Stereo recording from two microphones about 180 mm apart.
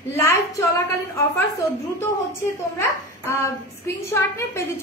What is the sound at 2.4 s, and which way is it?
A child's voice, 15° left (ahead or behind).